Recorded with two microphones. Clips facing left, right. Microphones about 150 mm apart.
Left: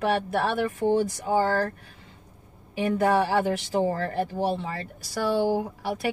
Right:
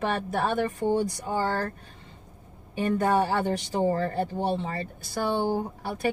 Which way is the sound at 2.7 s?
90° left.